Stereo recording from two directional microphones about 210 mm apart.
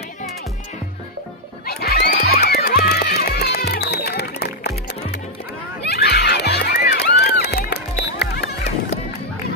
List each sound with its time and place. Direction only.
1.7 s music: 45° left (ahead or behind)